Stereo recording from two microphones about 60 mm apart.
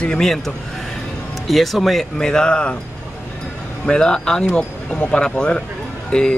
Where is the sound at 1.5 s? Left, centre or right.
Centre.